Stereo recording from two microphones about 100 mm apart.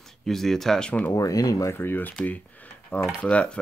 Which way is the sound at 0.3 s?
5° left (ahead or behind).